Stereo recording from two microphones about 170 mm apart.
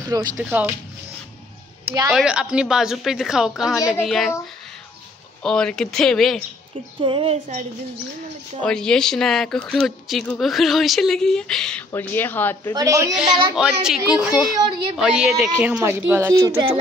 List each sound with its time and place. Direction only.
0.0 s speech: 20° right (ahead or behind)
0.4 s speech: 10° right (ahead or behind)
2.0 s speech: 5° right (ahead or behind)
5.4 s speech: 5° left (ahead or behind)
7.0 s speech: 30° right (ahead or behind)
8.6 s speech: 5° left (ahead or behind)
12.7 s a woman's voice: 20° right (ahead or behind)
13.1 s speech: 5° right (ahead or behind)
14.6 s a woman's voice: 30° right (ahead or behind)
15.0 s speech: 5° right (ahead or behind)
16.3 s a woman's voice: 25° right (ahead or behind)